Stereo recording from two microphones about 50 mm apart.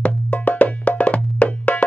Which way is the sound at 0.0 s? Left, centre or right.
Left.